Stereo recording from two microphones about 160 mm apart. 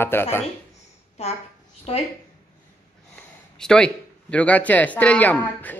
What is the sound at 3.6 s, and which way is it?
Speech, 5° left (ahead or behind).